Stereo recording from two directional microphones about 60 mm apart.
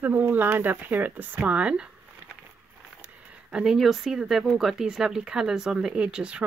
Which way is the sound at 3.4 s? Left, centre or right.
Centre.